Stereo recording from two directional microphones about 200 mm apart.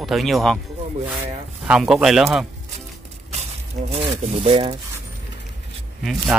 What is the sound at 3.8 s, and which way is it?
Speech, 30° right (ahead or behind).